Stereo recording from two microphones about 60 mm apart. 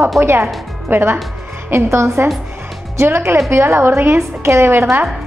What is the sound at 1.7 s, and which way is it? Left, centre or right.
A woman's voice, right.